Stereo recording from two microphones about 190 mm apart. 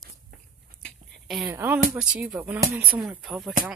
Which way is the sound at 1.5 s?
10° right (ahead or behind).